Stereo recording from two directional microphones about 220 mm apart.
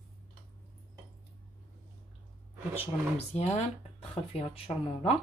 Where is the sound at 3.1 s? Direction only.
30° left (ahead or behind).